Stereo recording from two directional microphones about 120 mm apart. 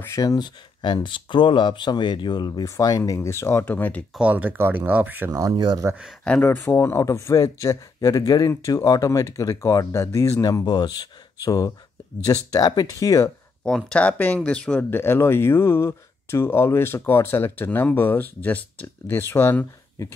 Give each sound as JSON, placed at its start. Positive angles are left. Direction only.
{"t": 0.0, "sound": "speech", "side_deg": 25}
{"t": 0.8, "sound": "speech", "side_deg": 45}
{"t": 4.2, "sound": "speech", "side_deg": -10}
{"t": 6.2, "sound": "speech", "side_deg": 15}
{"t": 10.4, "sound": "speech", "side_deg": 35}
{"t": 13.7, "sound": "speech", "side_deg": 5}